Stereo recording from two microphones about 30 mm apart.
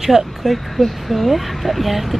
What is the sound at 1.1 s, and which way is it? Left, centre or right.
Speech, centre.